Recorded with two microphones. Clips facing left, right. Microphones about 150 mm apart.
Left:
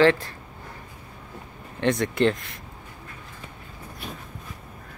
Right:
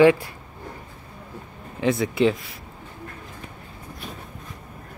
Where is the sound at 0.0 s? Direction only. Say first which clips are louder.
Right 3 dB; 10° right (ahead or behind).